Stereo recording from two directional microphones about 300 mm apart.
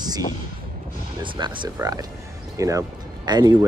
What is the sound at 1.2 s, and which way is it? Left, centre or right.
Speech, centre.